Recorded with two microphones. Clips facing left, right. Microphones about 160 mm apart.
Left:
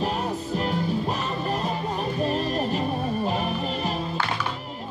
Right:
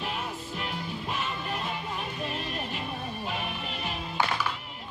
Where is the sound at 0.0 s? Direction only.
40° left (ahead or behind).